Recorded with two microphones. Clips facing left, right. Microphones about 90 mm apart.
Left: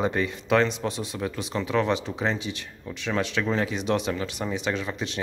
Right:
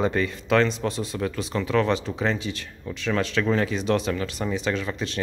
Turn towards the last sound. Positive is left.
turn(degrees=15)  # may be behind; listen again after turning